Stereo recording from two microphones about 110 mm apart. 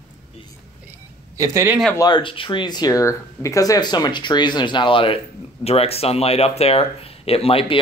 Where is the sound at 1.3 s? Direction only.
30° right (ahead or behind).